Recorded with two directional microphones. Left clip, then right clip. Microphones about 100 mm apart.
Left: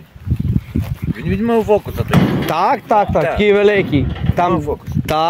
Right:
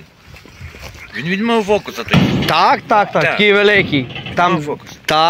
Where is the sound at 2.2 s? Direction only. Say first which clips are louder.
Even; 35° left (ahead or behind).